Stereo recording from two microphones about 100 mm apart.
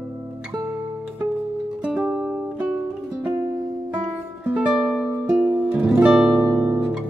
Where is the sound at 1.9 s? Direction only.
10° right (ahead or behind).